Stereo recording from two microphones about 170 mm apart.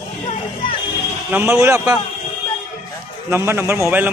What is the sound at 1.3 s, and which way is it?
Speech, 15° right (ahead or behind).